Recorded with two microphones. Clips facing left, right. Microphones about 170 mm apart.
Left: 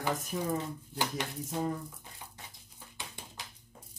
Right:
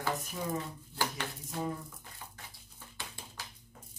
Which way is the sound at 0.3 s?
55° left (ahead or behind).